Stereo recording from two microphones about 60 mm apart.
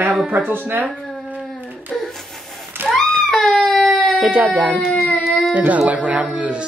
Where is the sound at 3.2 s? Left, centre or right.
Centre.